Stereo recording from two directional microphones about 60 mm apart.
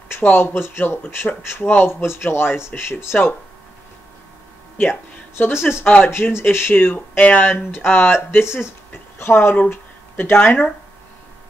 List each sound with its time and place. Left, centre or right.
0.2 s speech: left
5.4 s speech: left